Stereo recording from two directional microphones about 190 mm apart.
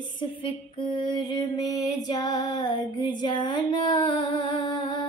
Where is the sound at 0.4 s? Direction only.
25° left (ahead or behind).